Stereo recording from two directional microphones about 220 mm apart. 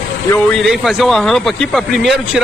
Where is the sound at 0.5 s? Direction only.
Centre (ahead or behind).